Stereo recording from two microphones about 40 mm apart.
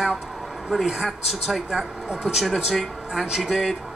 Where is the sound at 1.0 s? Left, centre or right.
Centre.